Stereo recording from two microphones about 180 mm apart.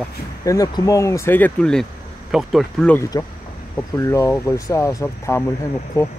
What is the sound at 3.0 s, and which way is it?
Speech, 20° left (ahead or behind).